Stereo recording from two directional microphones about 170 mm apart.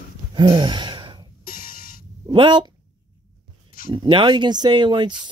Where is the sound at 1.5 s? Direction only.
55° left (ahead or behind).